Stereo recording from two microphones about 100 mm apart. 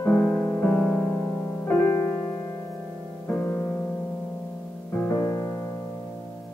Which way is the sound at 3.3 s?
15° left (ahead or behind).